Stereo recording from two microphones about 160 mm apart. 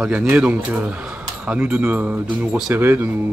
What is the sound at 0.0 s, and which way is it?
Speech, 5° right (ahead or behind).